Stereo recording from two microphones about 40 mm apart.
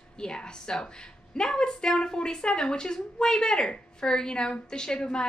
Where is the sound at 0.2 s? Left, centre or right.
Left.